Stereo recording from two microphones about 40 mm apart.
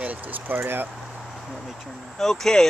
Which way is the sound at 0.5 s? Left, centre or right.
Right.